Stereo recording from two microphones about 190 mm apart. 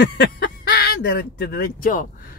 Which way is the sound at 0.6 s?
55° left (ahead or behind).